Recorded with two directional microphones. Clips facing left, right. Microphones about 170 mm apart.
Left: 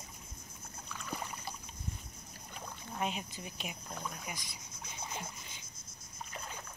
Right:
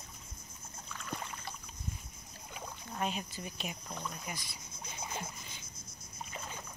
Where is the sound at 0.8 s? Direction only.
Centre (ahead or behind).